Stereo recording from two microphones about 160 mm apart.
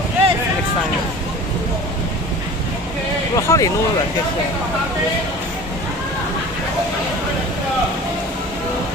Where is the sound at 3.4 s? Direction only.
20° left (ahead or behind).